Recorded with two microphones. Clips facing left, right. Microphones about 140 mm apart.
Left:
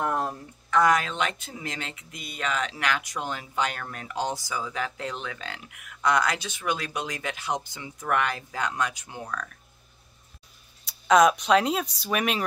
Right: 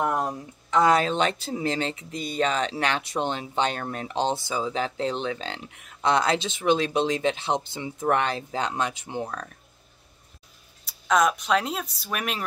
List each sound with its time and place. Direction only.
0.0 s speech: 15° right (ahead or behind)
10.9 s speech: centre (ahead or behind)